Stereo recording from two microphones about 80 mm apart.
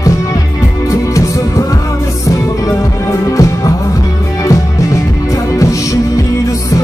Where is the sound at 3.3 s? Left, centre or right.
Left.